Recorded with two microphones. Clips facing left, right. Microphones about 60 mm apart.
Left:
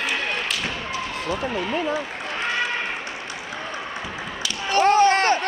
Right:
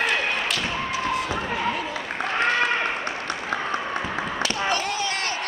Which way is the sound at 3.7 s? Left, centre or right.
Right.